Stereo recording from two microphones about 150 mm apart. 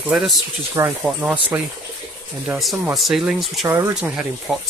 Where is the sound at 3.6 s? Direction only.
15° right (ahead or behind).